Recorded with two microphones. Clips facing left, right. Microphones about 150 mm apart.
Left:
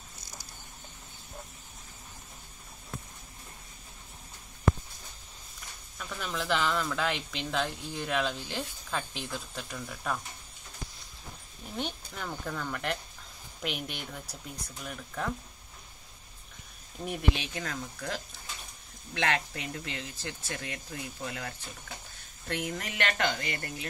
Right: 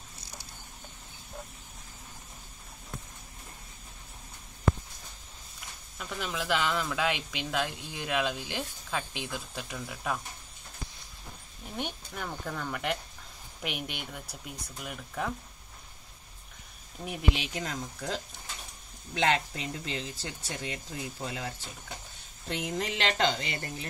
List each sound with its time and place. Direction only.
5.9 s speech: 10° right (ahead or behind)
11.7 s speech: 5° right (ahead or behind)
17.0 s speech: 5° right (ahead or behind)
17.4 s speech: 20° right (ahead or behind)